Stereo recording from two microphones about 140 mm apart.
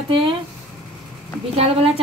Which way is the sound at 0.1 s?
40° right (ahead or behind).